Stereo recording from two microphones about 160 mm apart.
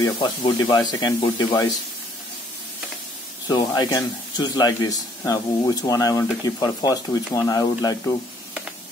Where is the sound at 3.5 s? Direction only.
25° left (ahead or behind).